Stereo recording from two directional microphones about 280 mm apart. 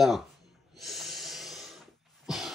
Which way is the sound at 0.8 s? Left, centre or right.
Centre.